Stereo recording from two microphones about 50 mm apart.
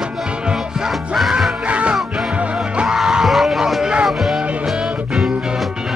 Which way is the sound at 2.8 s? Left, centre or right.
Centre.